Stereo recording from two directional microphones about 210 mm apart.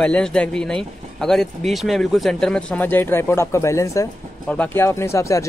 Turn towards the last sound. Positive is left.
turn(degrees=15)  # may be behind; listen again after turning